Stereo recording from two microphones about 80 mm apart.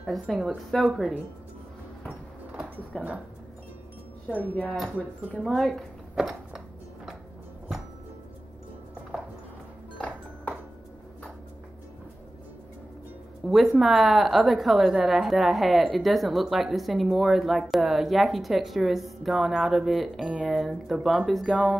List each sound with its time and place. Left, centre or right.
0.0 s a woman's voice: centre
2.9 s speech: centre
5.3 s speech: centre
9.9 s music: centre
13.5 s a woman's voice: centre